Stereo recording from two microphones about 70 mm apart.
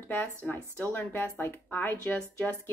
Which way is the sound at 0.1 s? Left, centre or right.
Left.